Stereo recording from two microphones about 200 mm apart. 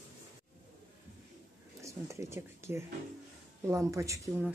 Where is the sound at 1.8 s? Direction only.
15° right (ahead or behind).